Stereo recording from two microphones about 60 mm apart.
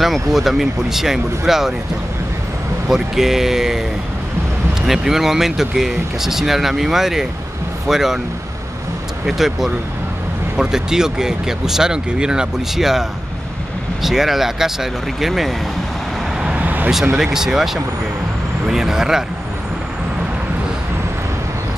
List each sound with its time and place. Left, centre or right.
0.0 s speech: centre
2.9 s speech: centre
4.8 s speech: centre
9.2 s speech: centre
14.0 s speech: centre
16.3 s vehicle: centre
16.6 s vehicle: right
17.1 s speech: centre
18.7 s speech: centre